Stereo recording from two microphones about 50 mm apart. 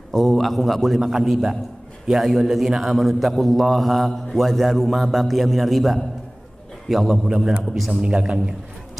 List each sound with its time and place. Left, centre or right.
0.1 s a man's voice: centre
7.9 s a man's voice: right